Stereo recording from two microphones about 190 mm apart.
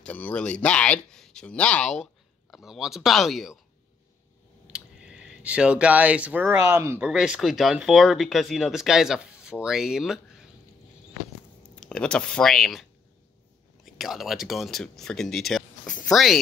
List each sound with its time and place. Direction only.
0.0 s speech: 10° left (ahead or behind)
4.7 s speech: 5° right (ahead or behind)
11.7 s speech: 5° left (ahead or behind)
13.9 s speech: centre (ahead or behind)